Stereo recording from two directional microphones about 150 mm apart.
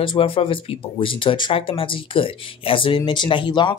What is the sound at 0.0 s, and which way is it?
Speech, 35° left (ahead or behind).